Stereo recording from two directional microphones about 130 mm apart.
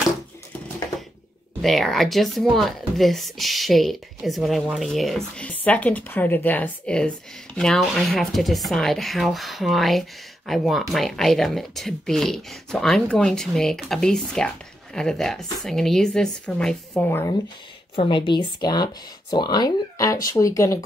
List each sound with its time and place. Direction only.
1.6 s speech: centre (ahead or behind)
17.9 s speech: 40° left (ahead or behind); by 20.8 s 25° left (ahead or behind)